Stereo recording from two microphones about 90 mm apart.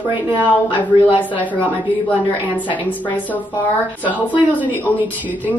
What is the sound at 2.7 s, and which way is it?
Speech, 20° left (ahead or behind).